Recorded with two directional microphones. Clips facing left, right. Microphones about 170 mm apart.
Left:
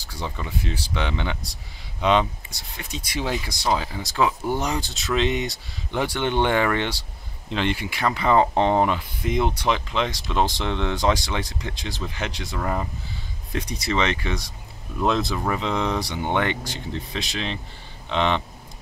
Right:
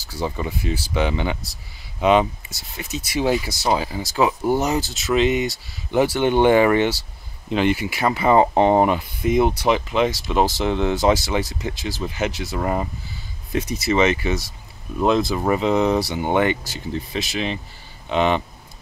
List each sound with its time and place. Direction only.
0.0 s speech: 5° right (ahead or behind)
12.5 s speech: 15° right (ahead or behind)
13.5 s speech: 5° right (ahead or behind)
15.3 s speech: 15° right (ahead or behind)